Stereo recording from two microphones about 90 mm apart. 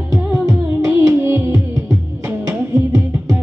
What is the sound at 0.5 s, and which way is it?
Music, 40° right (ahead or behind).